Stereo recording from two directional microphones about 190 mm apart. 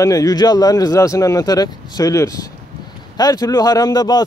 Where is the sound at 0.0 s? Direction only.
20° left (ahead or behind).